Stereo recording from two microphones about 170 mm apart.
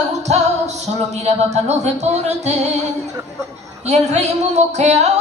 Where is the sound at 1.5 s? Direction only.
40° right (ahead or behind).